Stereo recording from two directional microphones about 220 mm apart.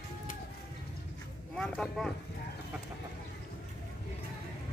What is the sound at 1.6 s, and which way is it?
Speech, centre (ahead or behind).